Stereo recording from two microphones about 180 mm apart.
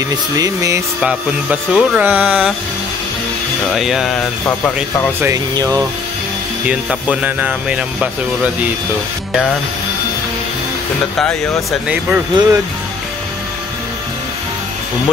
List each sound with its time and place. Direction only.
0.4 s speech: 15° right (ahead or behind)
1.0 s speech: 5° right (ahead or behind)
3.6 s music: centre (ahead or behind)
5.2 s speech: 20° right (ahead or behind)
6.6 s speech: 5° right (ahead or behind)
11.9 s speech: 10° right (ahead or behind)